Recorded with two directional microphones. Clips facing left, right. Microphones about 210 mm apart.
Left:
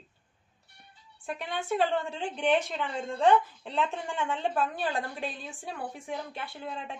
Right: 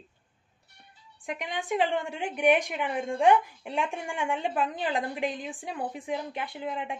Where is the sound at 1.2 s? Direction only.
15° right (ahead or behind).